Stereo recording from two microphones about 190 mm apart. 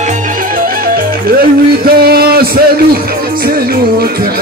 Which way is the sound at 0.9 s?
50° right (ahead or behind).